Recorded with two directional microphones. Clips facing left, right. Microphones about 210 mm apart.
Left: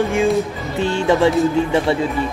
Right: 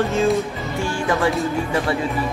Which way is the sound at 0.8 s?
25° left (ahead or behind).